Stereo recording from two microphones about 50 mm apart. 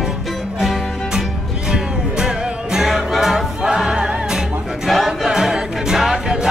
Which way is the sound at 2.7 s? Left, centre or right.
Centre.